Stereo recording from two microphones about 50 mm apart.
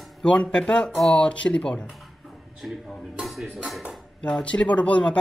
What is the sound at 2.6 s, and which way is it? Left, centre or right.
Speech, centre.